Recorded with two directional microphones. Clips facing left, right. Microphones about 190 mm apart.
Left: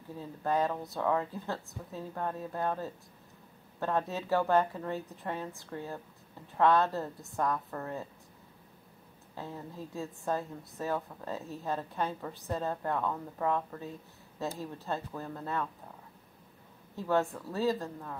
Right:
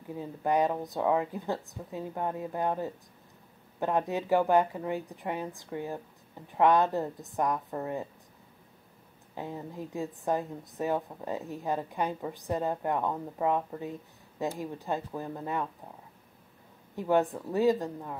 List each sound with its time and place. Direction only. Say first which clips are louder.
0.1 s a woman's voice: right 3 dB; 15° right (ahead or behind)
9.3 s a woman's voice: right 4 dB; 15° right (ahead or behind)
16.9 s a woman's voice: right 4 dB; 15° right (ahead or behind)